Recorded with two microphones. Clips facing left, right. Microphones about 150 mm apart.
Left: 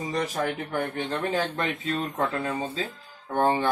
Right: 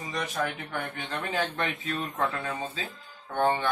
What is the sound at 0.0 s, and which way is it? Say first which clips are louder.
Speech: left 4 dB; 35° left (ahead or behind).